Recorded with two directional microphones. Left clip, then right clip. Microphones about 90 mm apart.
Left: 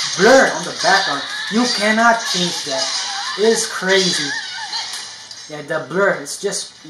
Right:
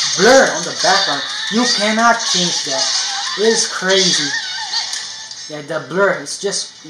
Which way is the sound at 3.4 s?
30° right (ahead or behind).